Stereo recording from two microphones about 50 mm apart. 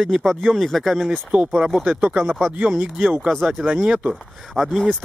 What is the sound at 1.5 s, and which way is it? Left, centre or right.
Speech, centre.